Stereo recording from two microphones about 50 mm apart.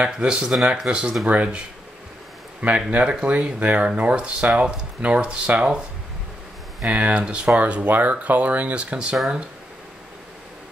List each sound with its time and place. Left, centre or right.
0.0 s speech: centre
2.6 s speech: right
6.9 s speech: right